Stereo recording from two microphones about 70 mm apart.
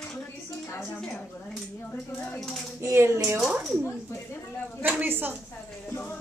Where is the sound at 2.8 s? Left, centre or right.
Right.